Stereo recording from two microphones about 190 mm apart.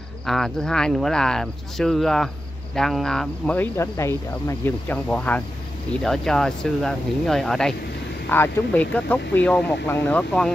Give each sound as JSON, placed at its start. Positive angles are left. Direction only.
{"t": 0.3, "sound": "speech", "side_deg": 0}